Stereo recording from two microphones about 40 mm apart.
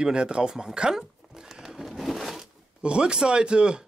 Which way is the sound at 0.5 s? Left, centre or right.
Centre.